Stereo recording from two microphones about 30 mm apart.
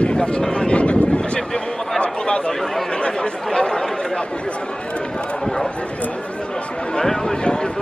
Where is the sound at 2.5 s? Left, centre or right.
Centre.